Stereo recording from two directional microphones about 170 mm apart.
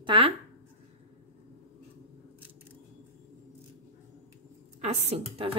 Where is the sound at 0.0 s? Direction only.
30° right (ahead or behind).